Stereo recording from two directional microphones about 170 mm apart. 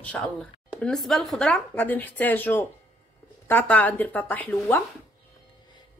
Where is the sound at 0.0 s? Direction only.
5° left (ahead or behind).